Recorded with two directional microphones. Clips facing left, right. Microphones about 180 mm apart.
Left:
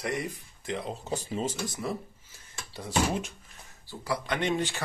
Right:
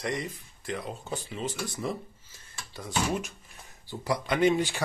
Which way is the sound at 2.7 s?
25° left (ahead or behind).